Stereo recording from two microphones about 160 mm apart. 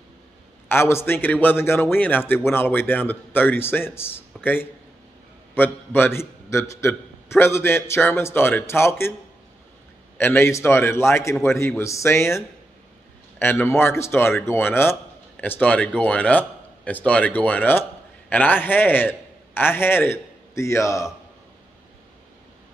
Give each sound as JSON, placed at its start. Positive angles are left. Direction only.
{"t": 0.7, "sound": "a man's voice", "side_deg": 15}
{"t": 10.1, "sound": "a man's voice", "side_deg": 15}